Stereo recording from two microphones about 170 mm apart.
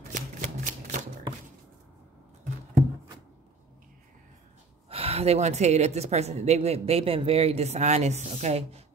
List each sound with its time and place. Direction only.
0.1 s shuffling cards: 45° right (ahead or behind)
4.8 s a woman's voice: 35° right (ahead or behind)